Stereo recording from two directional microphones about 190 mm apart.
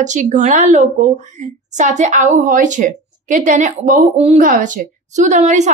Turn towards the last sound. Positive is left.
turn(degrees=-40)  # may be behind; listen again after turning